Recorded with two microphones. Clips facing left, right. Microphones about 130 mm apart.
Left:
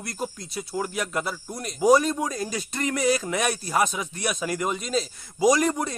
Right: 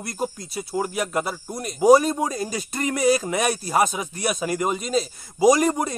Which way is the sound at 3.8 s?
45° right (ahead or behind).